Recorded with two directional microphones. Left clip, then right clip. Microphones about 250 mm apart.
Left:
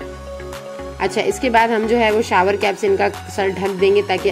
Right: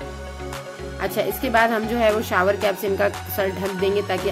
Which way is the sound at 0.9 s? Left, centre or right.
Centre.